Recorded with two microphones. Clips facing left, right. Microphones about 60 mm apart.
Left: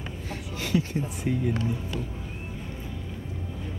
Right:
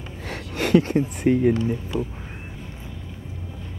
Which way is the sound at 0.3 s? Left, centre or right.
Right.